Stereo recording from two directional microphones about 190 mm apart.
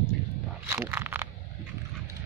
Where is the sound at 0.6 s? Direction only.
10° right (ahead or behind).